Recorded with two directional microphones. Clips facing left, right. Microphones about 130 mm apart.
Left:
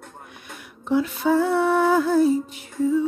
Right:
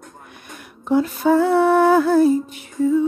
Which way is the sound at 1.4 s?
60° right (ahead or behind).